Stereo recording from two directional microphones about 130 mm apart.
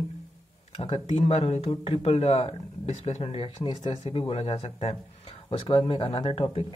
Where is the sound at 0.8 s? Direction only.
45° left (ahead or behind).